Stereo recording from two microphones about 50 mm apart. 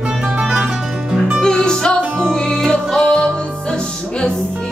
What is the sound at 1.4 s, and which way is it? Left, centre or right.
Music, centre.